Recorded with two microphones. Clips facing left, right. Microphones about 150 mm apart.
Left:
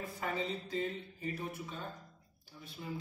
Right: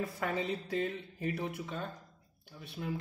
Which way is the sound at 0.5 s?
70° right (ahead or behind).